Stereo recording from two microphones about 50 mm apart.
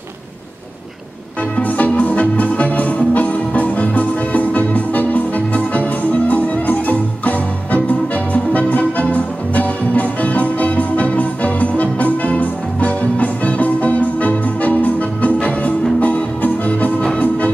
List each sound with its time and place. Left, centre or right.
1.6 s music: left